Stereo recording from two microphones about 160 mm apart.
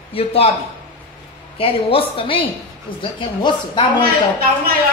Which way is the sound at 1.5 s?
35° left (ahead or behind).